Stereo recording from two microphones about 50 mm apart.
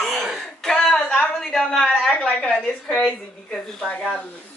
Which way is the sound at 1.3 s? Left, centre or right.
Centre.